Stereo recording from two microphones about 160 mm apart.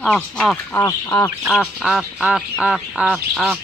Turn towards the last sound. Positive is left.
turn(degrees=0)  # may be behind; listen again after turning